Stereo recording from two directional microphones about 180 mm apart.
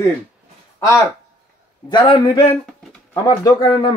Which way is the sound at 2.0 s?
30° left (ahead or behind).